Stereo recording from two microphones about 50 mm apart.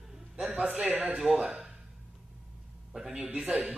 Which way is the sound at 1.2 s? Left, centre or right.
Centre.